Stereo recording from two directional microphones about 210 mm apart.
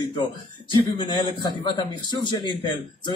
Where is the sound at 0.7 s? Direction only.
20° left (ahead or behind).